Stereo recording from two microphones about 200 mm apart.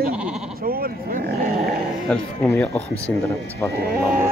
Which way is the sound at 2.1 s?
5° left (ahead or behind).